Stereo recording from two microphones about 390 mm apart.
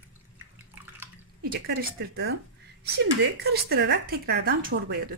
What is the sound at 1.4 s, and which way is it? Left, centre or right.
Speech, right.